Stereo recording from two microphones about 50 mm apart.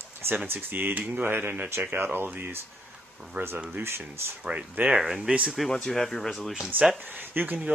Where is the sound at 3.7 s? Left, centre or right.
Right.